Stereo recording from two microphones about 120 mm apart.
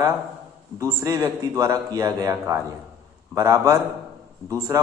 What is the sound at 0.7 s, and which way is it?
A man's voice, 30° right (ahead or behind).